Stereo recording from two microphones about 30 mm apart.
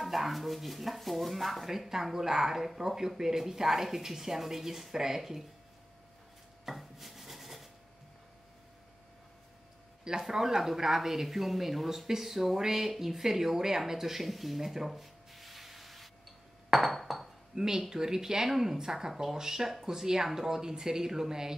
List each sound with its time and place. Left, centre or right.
0.0 s speech: centre
1.7 s speech: centre
6.6 s rub: centre
10.2 s speech: centre
14.9 s a sound: centre
16.7 s speech: centre
17.1 s dishes: centre
17.6 s speech: centre